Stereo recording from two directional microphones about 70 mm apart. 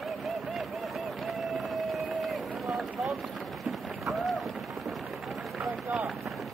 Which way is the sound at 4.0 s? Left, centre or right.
Centre.